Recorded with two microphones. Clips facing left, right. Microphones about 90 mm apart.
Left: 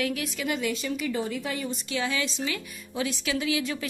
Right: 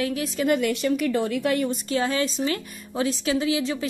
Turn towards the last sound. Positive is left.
turn(degrees=-25)  # may be behind; listen again after turning